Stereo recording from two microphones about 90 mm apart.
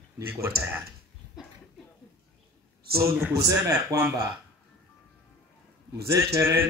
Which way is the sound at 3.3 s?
40° right (ahead or behind).